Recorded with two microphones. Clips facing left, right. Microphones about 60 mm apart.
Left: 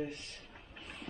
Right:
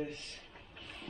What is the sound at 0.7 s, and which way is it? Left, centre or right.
Vehicle, left.